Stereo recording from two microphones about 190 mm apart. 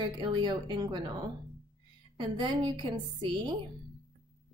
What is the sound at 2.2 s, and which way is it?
A woman's voice, 25° right (ahead or behind).